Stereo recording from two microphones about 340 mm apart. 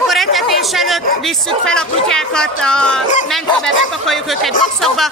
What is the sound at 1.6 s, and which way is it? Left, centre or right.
Speech, centre.